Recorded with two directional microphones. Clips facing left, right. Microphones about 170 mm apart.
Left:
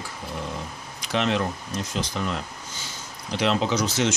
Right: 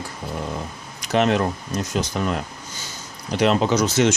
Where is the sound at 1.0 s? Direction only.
50° right (ahead or behind).